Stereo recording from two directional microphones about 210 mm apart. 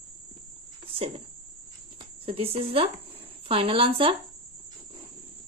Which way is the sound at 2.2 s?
25° right (ahead or behind).